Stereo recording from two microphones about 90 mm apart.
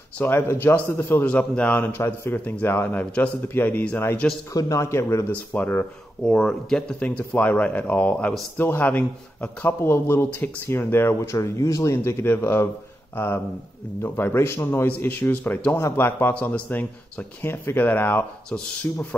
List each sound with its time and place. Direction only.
0.2 s a man's voice: 25° left (ahead or behind)
1.2 s a man's voice: 15° left (ahead or behind)
4.6 s a man's voice: 35° left (ahead or behind)
5.3 s speech: 15° left (ahead or behind)
6.2 s a man's voice: 5° left (ahead or behind); by 19.0 s 20° left (ahead or behind)